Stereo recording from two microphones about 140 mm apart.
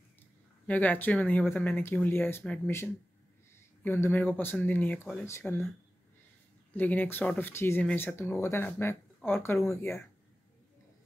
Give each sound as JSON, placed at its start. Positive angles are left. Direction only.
{"t": 0.7, "sound": "speech", "side_deg": 10}
{"t": 6.7, "sound": "speech", "side_deg": 10}